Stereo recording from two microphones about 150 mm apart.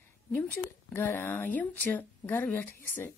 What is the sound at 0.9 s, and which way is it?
Speech, 15° left (ahead or behind).